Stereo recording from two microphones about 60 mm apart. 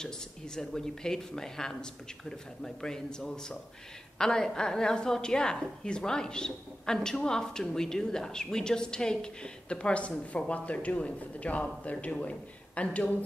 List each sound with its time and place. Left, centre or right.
0.6 s a woman's voice: centre